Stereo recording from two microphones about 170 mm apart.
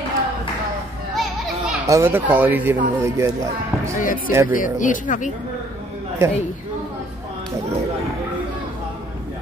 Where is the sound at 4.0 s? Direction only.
50° left (ahead or behind).